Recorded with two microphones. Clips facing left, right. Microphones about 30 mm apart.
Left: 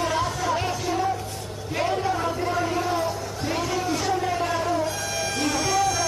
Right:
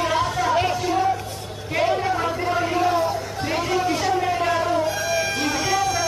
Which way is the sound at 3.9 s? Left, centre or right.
Centre.